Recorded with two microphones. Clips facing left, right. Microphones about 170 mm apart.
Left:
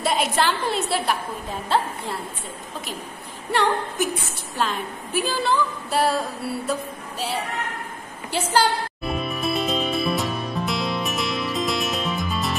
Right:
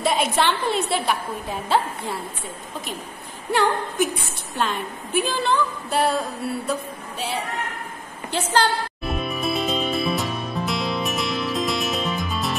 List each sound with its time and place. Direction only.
0.0 s a woman's voice: centre (ahead or behind)
4.6 s a woman's voice: centre (ahead or behind)
6.7 s music: centre (ahead or behind)